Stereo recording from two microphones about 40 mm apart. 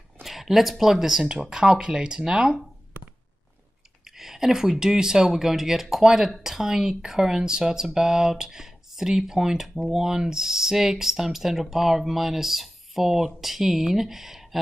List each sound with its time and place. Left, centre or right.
0.2 s speech: centre
4.0 s speech: centre